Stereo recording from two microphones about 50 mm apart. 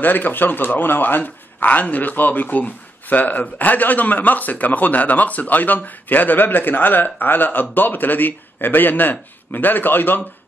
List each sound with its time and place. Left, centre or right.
0.0 s a man's voice: left